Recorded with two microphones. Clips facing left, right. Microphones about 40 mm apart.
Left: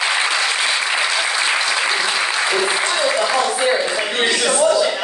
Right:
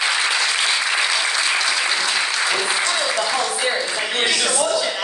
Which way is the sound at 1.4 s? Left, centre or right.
Centre.